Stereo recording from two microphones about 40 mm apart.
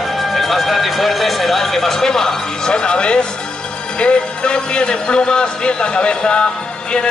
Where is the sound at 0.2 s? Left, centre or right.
Centre.